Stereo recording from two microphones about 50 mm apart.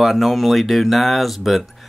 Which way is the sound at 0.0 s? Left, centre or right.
Centre.